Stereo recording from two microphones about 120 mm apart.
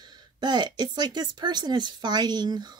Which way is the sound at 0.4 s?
35° right (ahead or behind).